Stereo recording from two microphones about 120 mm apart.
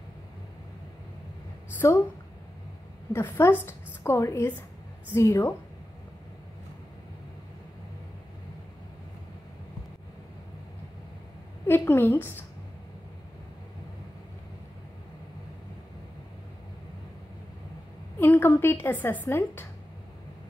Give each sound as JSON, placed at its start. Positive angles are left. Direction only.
{"t": 3.1, "sound": "a woman's voice", "side_deg": 20}
{"t": 11.6, "sound": "a woman's voice", "side_deg": 20}
{"t": 18.2, "sound": "a woman's voice", "side_deg": 15}